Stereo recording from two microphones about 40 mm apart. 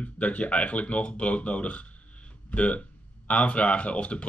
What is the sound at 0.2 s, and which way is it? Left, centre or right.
Speech, left.